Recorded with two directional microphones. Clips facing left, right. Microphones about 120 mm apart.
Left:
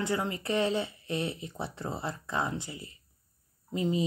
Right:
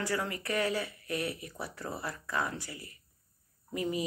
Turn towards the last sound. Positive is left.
turn(degrees=25)  # may be behind; listen again after turning